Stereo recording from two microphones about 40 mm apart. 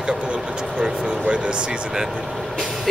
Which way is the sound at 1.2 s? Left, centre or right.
Right.